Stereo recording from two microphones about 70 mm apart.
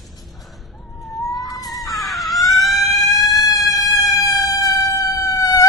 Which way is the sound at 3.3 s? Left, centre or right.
Left.